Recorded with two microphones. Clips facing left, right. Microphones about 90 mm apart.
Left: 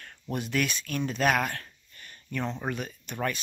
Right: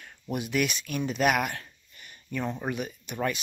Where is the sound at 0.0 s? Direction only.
15° right (ahead or behind).